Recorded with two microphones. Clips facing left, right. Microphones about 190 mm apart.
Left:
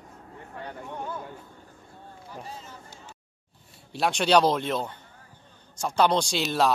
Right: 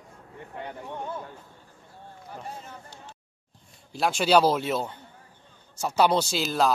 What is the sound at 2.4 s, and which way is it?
Speech, 60° right (ahead or behind).